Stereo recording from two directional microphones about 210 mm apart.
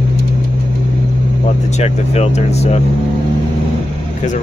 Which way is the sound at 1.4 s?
30° left (ahead or behind).